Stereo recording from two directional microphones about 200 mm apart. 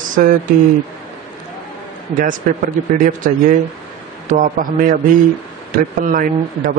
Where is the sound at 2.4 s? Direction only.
40° right (ahead or behind).